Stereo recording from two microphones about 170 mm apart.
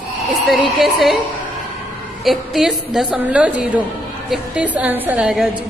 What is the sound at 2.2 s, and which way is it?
A woman's voice, centre (ahead or behind).